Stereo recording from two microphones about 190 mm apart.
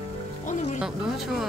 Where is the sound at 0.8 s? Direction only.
5° right (ahead or behind).